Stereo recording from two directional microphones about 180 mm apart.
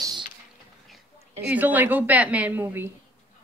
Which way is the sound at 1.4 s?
10° right (ahead or behind).